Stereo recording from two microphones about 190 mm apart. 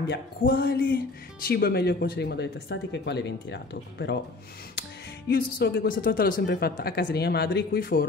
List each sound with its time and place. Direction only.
0.1 s speech: 55° left (ahead or behind)
5.3 s speech: 50° left (ahead or behind)